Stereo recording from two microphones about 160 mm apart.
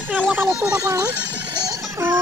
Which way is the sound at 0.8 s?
20° right (ahead or behind).